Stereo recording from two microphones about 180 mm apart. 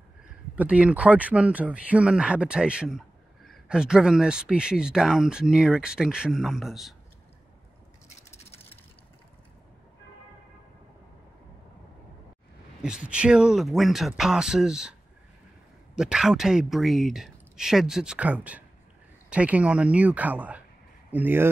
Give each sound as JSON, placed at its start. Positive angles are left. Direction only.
{"t": 0.6, "sound": "speech", "side_deg": -5}
{"t": 8.2, "sound": "a sound", "side_deg": 35}
{"t": 12.8, "sound": "speech", "side_deg": -5}
{"t": 16.0, "sound": "speech", "side_deg": -5}